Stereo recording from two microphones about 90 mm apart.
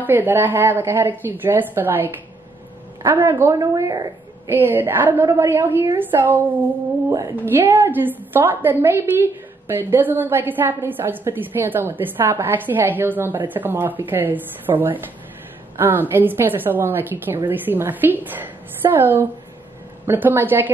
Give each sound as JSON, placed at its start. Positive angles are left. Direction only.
{"t": 0.0, "sound": "a woman's voice", "side_deg": -20}
{"t": 3.5, "sound": "a woman's voice", "side_deg": -40}
{"t": 4.5, "sound": "a woman's voice", "side_deg": -25}
{"t": 7.1, "sound": "a woman's voice", "side_deg": -40}
{"t": 7.4, "sound": "a woman's voice", "side_deg": -25}